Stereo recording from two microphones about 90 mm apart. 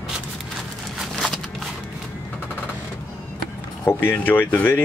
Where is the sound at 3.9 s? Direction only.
20° left (ahead or behind).